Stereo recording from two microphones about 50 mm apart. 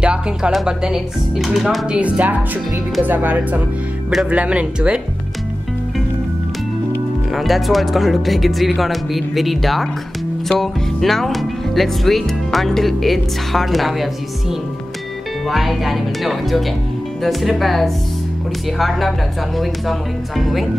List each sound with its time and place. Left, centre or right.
0.0 s speech: centre
1.9 s speech: right
7.3 s speech: centre
15.4 s speech: centre